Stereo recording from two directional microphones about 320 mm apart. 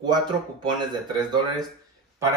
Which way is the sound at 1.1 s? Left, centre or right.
Centre.